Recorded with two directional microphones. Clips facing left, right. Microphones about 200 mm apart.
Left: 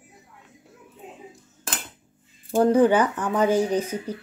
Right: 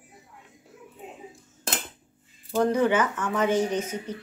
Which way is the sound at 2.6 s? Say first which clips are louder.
Left 5 dB; 30° left (ahead or behind).